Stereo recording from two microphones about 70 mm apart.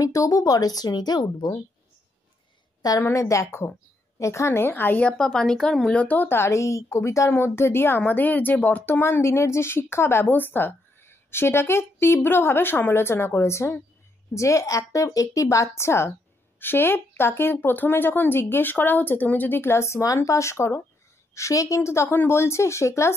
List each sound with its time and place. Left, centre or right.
0.0 s speech: left
3.0 s a woman's voice: left
5.1 s speech: centre
6.0 s speech: left
6.3 s speech: left
9.0 s a woman's voice: left
15.8 s a woman's voice: left